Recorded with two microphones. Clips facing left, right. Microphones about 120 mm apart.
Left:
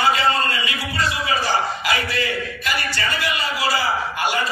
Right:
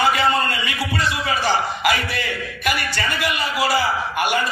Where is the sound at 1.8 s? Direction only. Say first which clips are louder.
Right 1 dB; 60° right (ahead or behind).